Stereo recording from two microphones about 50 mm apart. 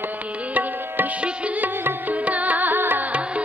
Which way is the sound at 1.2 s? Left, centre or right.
Right.